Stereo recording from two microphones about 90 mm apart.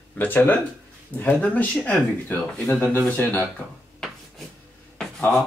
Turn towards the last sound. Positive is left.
turn(degrees=5)  # may be behind; listen again after turning